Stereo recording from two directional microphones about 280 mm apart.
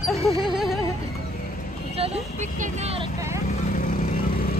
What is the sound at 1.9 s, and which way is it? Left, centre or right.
Speech, right.